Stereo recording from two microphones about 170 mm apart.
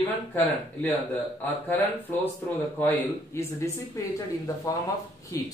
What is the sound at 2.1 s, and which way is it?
Speech, 10° left (ahead or behind).